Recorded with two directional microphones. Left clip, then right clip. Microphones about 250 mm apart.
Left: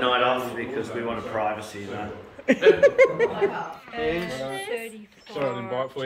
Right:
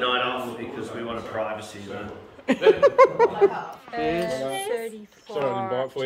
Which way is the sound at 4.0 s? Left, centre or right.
Right.